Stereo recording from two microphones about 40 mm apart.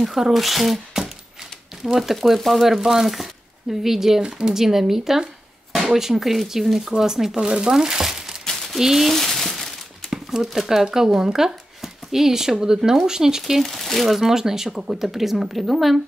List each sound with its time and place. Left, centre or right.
0.0 s speech: centre
4.2 s speech: centre
7.3 s speech: right
7.7 s speech: centre
9.1 s crumpling: centre
10.1 s crumpling: centre
10.6 s speech: centre
13.6 s speech: centre